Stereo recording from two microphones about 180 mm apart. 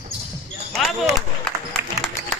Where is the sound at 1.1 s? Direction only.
Centre (ahead or behind).